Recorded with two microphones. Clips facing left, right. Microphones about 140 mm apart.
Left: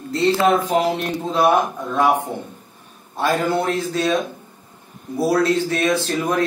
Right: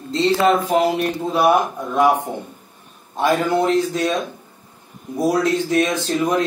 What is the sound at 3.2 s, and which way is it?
Speech, 15° right (ahead or behind).